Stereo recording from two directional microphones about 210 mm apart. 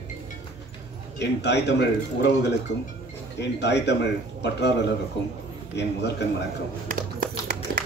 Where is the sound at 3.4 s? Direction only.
55° left (ahead or behind).